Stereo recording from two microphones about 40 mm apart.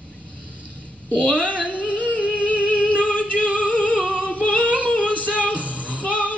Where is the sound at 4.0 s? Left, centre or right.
Left.